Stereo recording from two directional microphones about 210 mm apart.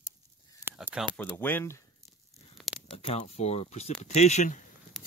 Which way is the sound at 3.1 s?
30° left (ahead or behind).